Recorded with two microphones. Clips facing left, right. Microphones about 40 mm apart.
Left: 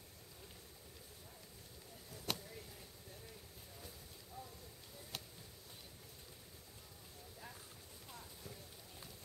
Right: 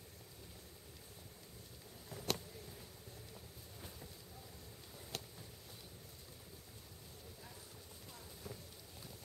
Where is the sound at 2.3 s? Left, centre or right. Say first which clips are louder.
Right 2 dB; centre.